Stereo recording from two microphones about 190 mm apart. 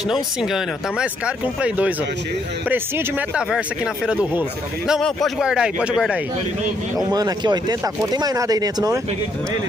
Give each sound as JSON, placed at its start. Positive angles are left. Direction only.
{"t": 0.0, "sound": "speech", "side_deg": 0}
{"t": 7.0, "sound": "speech", "side_deg": -20}